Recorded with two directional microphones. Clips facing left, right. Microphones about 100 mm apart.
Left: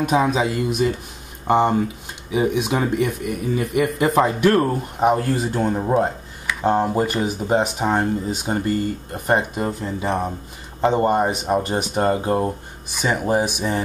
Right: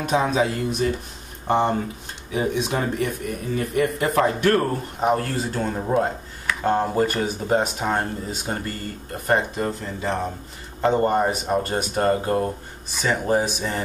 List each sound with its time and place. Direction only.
0.0 s speech: 10° left (ahead or behind)